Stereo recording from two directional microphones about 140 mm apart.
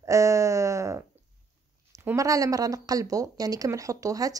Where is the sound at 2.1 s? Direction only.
25° right (ahead or behind).